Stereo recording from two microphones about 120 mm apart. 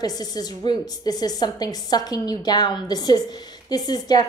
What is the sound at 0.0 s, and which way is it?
A woman's voice, 35° left (ahead or behind).